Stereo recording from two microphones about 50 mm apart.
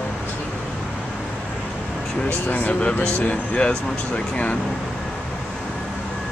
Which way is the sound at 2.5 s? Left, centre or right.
Left.